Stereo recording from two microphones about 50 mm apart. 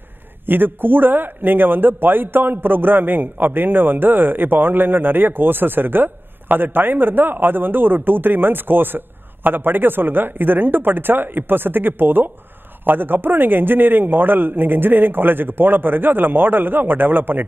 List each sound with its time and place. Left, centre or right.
0.5 s a man's voice: right